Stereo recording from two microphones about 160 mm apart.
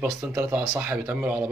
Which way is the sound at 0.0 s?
10° right (ahead or behind).